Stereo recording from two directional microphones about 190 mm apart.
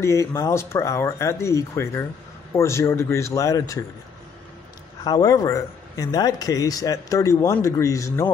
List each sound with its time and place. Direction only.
0.0 s speech: 15° left (ahead or behind)
5.0 s speech: 20° left (ahead or behind)